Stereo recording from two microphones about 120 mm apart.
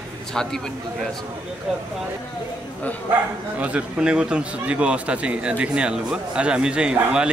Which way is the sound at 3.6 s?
10° right (ahead or behind).